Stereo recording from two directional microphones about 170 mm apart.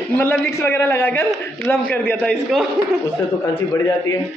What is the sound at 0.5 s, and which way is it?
A man's voice, 15° left (ahead or behind).